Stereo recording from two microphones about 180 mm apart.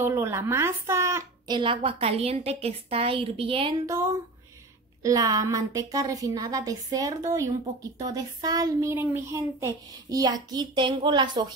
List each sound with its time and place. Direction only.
0.0 s a woman's voice: 15° right (ahead or behind)
1.6 s a woman's voice: 30° right (ahead or behind)
5.0 s a child's voice: 20° right (ahead or behind)
8.9 s a child's voice: 10° right (ahead or behind)